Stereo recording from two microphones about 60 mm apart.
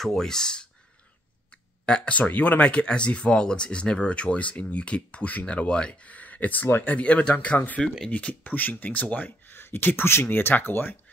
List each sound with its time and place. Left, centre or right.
0.0 s speech: centre
1.9 s speech: centre
9.5 s speech: left